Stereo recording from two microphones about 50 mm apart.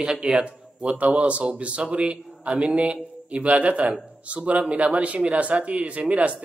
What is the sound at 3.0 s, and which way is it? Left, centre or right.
A man's voice, right.